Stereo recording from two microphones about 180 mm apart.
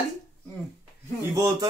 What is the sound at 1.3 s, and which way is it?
Speech, 20° right (ahead or behind).